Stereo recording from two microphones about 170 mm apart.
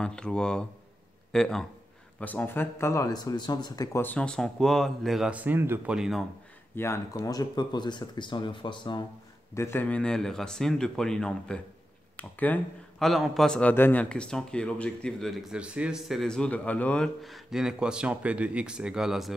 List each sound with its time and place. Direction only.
0.0 s speech: 5° left (ahead or behind); by 5.9 s 10° right (ahead or behind)
5.9 s speech: centre (ahead or behind)
6.7 s speech: 15° left (ahead or behind)
9.5 s speech: 15° left (ahead or behind); by 19.3 s centre (ahead or behind)